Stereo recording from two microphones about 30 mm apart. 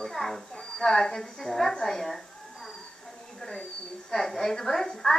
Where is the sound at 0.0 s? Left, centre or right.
Centre.